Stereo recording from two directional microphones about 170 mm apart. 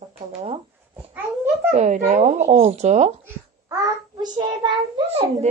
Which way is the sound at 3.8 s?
25° right (ahead or behind).